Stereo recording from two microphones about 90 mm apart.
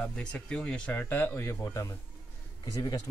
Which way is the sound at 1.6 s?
40° left (ahead or behind).